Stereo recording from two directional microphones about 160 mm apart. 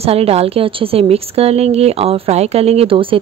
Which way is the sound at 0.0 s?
40° right (ahead or behind).